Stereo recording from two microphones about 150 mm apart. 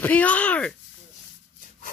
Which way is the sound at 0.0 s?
10° left (ahead or behind).